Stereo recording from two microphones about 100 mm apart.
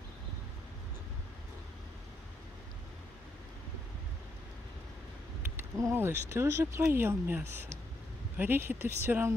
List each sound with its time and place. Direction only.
5.6 s speech: 25° right (ahead or behind)